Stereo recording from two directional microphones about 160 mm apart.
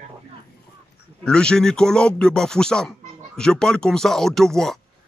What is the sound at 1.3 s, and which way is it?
Speech, 5° left (ahead or behind).